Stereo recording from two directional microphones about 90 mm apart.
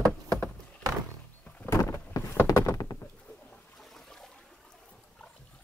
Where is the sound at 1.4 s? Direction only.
15° left (ahead or behind).